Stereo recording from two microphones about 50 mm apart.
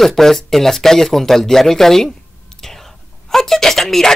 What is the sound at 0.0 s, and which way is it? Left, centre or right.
A man's voice, centre.